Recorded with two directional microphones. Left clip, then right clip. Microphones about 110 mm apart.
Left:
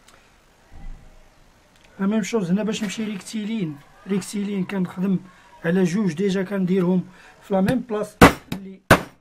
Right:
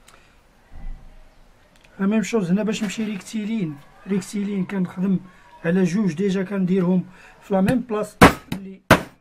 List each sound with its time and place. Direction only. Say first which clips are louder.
2.0 s speech: right 1 dB; centre (ahead or behind)
8.5 s hammer: even; 5° left (ahead or behind)